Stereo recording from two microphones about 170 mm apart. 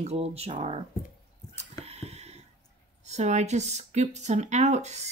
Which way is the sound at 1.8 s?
40° right (ahead or behind).